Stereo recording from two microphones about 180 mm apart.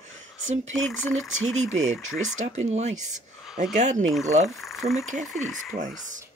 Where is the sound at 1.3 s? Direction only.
90° right.